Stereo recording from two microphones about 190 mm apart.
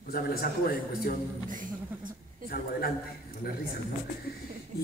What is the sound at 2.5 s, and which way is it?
Speech, 50° left (ahead or behind).